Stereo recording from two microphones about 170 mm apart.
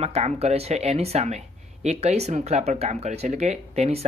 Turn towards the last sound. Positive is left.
turn(degrees=-40)  # may be behind; listen again after turning